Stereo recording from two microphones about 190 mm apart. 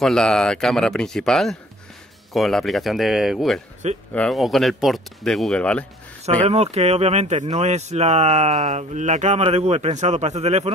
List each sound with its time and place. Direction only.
0.0 s speech: 5° left (ahead or behind)
6.4 s speech: 35° right (ahead or behind)